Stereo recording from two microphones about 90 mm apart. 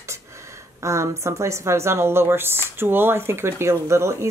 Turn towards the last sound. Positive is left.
turn(degrees=-30)  # may be behind; listen again after turning